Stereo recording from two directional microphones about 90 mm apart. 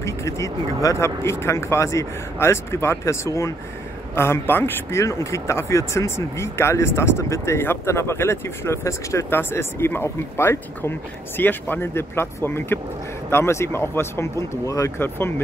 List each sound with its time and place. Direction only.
0.0 s vehicle: 35° left (ahead or behind)
0.8 s speech: 30° left (ahead or behind)
5.0 s speech: 35° left (ahead or behind)
15.0 s speech: 25° left (ahead or behind)